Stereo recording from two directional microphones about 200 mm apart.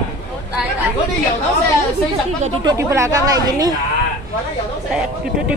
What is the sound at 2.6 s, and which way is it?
Speech, 15° right (ahead or behind).